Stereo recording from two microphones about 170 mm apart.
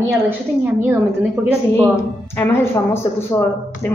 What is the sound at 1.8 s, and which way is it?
A woman's voice, 15° left (ahead or behind).